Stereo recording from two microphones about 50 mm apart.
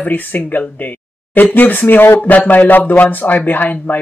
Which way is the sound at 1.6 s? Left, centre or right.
Left.